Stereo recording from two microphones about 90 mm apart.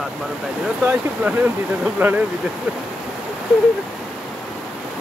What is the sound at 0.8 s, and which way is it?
Speech, 15° right (ahead or behind).